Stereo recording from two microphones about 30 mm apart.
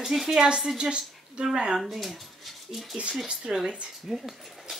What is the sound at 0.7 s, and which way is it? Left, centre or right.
Speech, right.